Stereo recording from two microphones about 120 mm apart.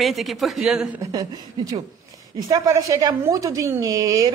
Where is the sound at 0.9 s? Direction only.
30° right (ahead or behind).